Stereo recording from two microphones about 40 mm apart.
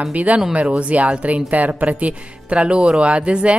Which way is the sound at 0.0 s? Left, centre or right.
Right.